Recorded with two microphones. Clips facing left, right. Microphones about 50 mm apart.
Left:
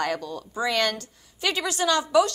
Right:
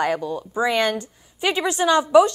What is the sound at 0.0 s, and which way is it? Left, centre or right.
A woman's voice, centre.